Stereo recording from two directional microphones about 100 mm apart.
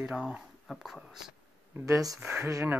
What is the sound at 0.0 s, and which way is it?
Speech, 15° right (ahead or behind).